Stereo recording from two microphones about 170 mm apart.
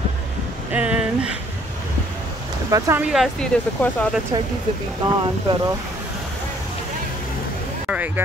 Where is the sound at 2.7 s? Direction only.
10° right (ahead or behind).